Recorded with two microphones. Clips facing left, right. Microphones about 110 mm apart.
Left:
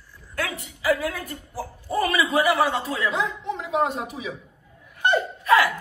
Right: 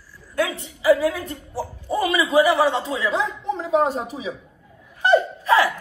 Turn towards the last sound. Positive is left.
turn(degrees=-30)  # may be behind; listen again after turning